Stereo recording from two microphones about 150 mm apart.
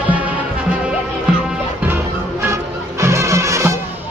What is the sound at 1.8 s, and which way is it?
Music, 15° right (ahead or behind).